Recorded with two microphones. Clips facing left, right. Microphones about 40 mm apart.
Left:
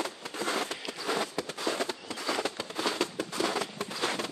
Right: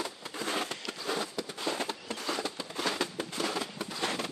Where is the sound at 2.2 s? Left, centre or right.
Left.